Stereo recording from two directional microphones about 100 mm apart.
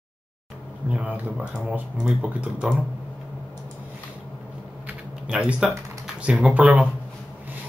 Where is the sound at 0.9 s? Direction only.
15° right (ahead or behind).